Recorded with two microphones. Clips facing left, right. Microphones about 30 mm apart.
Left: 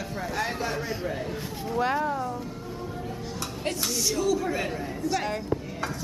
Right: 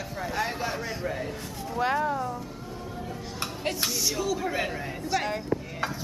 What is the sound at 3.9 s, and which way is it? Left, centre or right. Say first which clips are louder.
A woman's voice: left 3 dB; centre.